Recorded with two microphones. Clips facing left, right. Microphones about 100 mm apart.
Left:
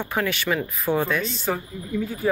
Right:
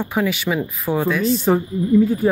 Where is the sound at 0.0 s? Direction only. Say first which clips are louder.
Right 5 dB; 10° right (ahead or behind).